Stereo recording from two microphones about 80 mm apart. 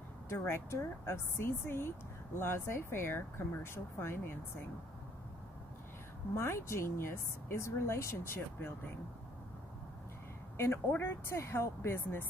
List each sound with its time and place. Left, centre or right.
0.3 s speech: left
6.3 s speech: left
11.0 s speech: left